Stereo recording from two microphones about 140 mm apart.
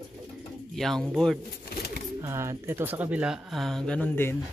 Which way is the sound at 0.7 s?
Centre (ahead or behind).